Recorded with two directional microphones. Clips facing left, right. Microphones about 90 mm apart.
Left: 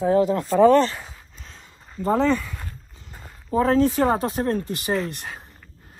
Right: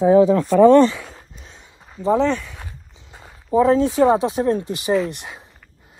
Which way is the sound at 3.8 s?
Centre (ahead or behind).